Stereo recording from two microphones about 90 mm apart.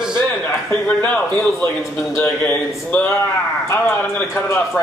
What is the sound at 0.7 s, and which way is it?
A man's voice, 15° left (ahead or behind).